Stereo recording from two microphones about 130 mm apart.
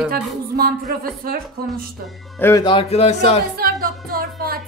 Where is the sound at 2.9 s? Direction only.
55° left (ahead or behind).